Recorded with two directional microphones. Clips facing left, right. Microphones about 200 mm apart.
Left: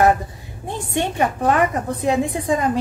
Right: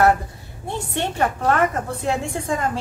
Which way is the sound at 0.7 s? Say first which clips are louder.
Left 2 dB; 15° left (ahead or behind).